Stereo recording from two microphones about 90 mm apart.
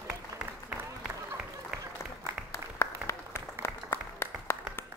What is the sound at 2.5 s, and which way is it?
Applause, 30° left (ahead or behind).